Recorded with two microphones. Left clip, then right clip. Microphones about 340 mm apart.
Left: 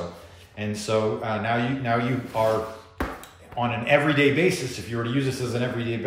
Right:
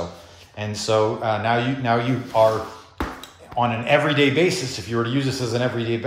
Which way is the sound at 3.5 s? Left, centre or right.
Centre.